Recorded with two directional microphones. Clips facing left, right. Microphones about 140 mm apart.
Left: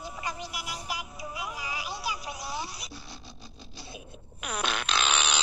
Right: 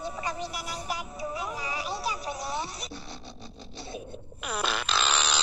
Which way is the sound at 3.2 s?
25° right (ahead or behind).